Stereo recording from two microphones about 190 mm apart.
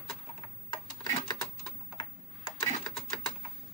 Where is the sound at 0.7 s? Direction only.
20° left (ahead or behind).